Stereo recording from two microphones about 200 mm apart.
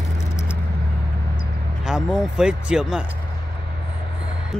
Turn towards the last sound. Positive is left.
turn(degrees=-5)  # may be behind; listen again after turning